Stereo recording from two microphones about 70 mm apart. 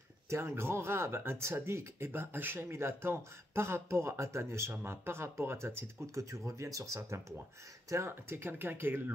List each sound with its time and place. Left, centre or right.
0.3 s speech: right
7.9 s speech: right